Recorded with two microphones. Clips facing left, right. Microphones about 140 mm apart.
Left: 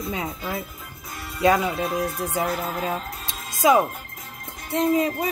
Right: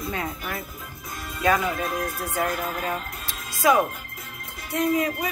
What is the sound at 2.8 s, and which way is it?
Music, 15° left (ahead or behind).